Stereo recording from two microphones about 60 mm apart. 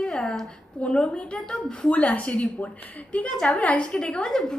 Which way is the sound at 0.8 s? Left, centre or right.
Centre.